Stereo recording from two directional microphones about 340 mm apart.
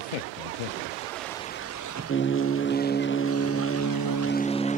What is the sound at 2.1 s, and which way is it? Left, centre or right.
Vehicle, left.